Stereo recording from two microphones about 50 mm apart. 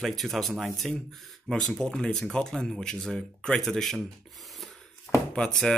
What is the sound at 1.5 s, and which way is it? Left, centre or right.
Speech, centre.